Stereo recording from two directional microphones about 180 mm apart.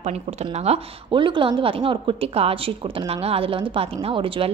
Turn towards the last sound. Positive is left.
turn(degrees=-30)  # may be behind; listen again after turning